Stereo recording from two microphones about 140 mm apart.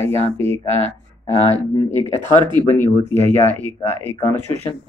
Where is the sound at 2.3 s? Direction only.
35° right (ahead or behind).